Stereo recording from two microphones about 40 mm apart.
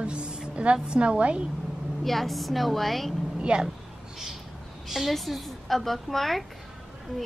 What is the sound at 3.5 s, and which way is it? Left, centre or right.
Speech, right.